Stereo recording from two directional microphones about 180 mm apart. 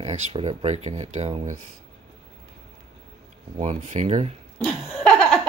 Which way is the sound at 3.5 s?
40° right (ahead or behind).